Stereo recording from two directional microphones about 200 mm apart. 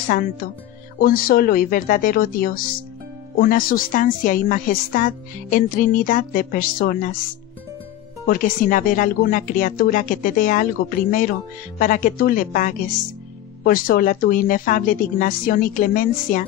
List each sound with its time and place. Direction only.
0.9 s speech: 45° left (ahead or behind)
8.3 s speech: 45° left (ahead or behind)